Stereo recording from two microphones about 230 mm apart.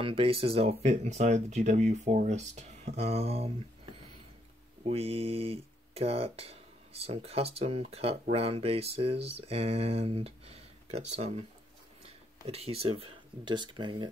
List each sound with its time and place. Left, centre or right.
0.0 s speech: right